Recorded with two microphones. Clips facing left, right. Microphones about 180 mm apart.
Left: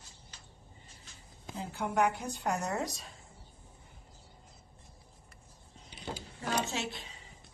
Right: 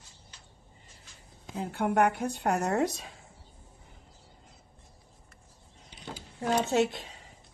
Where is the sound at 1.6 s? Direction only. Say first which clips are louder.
Right 5 dB; 60° right (ahead or behind).